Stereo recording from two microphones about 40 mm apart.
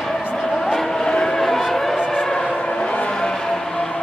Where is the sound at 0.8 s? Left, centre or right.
Centre.